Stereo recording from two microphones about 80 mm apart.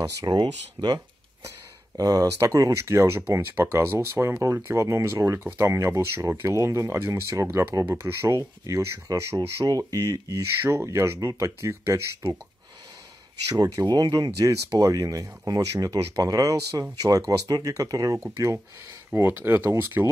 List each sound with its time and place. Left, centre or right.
0.2 s speech: right
2.0 s speech: right
7.2 s speech: right
9.7 s speech: right
10.7 s speech: right
13.5 s speech: right
19.1 s speech: right